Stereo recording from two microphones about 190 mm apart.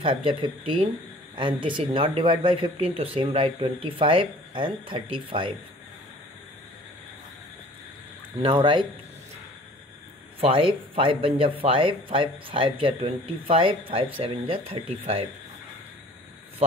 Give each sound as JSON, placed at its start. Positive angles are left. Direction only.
{"t": 0.0, "sound": "speech", "side_deg": -30}
{"t": 8.4, "sound": "speech", "side_deg": -25}
{"t": 10.4, "sound": "speech", "side_deg": -30}